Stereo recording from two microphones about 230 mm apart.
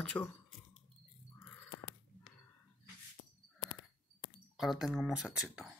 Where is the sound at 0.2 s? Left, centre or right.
Centre.